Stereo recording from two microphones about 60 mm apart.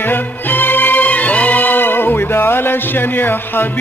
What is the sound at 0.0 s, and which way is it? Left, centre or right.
Music, left.